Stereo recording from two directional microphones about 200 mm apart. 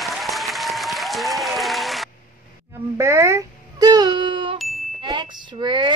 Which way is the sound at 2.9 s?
15° right (ahead or behind).